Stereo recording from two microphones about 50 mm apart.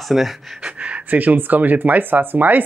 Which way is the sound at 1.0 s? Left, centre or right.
Right.